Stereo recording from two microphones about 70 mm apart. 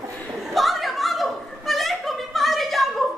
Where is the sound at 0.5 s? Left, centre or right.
Centre.